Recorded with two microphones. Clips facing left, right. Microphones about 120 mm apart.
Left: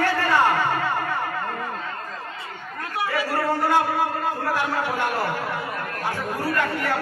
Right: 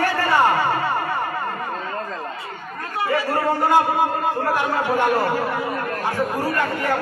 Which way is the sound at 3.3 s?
15° right (ahead or behind).